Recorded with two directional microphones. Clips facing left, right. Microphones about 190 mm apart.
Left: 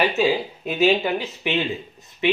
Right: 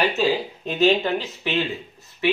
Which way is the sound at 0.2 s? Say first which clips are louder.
Left 1 dB; 10° left (ahead or behind).